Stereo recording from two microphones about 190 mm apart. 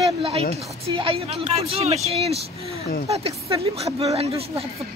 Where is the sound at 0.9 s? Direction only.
30° right (ahead or behind).